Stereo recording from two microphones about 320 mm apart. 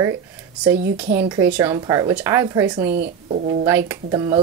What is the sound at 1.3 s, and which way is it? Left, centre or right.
Speech, centre.